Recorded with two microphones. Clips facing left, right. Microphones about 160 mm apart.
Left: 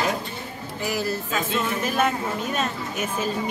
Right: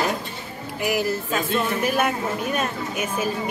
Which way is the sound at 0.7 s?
15° right (ahead or behind).